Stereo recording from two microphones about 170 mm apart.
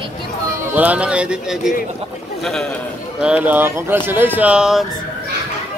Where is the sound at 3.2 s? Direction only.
10° right (ahead or behind).